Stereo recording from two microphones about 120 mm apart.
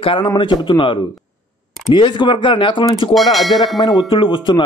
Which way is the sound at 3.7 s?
40° left (ahead or behind).